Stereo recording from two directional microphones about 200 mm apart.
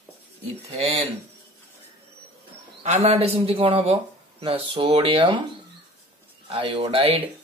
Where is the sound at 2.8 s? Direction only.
35° right (ahead or behind).